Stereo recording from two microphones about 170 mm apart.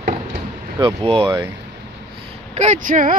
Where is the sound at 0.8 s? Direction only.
30° right (ahead or behind).